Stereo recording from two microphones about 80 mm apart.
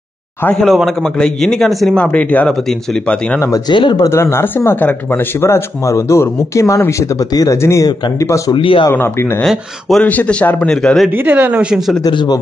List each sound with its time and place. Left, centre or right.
1.1 s speech: centre
2.0 s speech: centre
3.6 s speech: left
4.0 s speech: left
8.5 s speech: left
8.9 s a man's voice: left
9.4 s speech: centre
10.0 s a man's voice: centre
10.7 s speech: centre
11.2 s speech: right
11.7 s speech: centre
12.1 s speech: left